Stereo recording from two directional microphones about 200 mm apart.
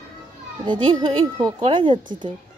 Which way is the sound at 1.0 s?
25° right (ahead or behind).